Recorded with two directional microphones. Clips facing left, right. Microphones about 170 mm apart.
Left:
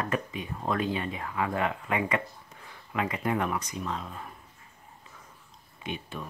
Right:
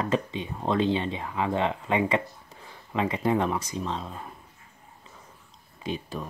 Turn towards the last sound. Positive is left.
turn(degrees=-35)  # may be behind; listen again after turning